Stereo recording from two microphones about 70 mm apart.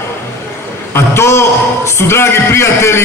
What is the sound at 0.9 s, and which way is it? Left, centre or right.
A man's voice, left.